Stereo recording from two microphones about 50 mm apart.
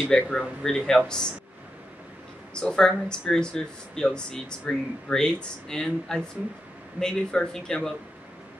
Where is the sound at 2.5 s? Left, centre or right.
Centre.